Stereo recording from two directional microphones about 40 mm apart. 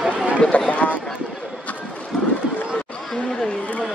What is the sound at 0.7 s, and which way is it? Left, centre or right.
Run, left.